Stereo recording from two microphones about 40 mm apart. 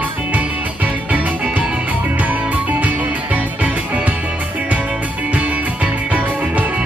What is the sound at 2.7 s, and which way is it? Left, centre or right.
Music, right.